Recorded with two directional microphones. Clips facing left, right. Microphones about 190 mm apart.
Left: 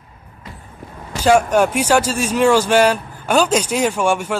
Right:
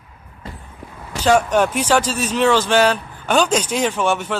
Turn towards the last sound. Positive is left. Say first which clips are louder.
# left 2 dB
turn(degrees=10)  # may be behind; listen again after turning